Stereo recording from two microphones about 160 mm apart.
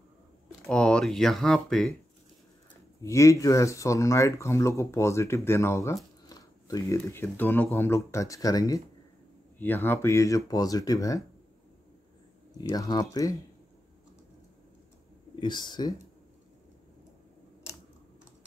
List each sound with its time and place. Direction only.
0.7 s speech: 5° left (ahead or behind)
3.0 s speech: 20° left (ahead or behind)
12.5 s speech: 25° left (ahead or behind)
15.3 s speech: 30° left (ahead or behind)